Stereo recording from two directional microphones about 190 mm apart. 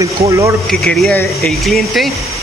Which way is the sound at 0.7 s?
Centre (ahead or behind).